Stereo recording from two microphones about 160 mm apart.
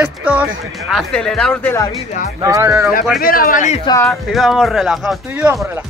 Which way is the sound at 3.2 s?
65° left (ahead or behind).